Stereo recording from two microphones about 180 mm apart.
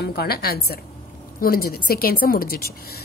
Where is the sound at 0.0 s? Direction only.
60° left (ahead or behind).